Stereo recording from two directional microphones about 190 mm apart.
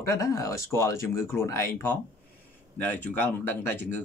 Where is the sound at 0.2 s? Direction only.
15° left (ahead or behind).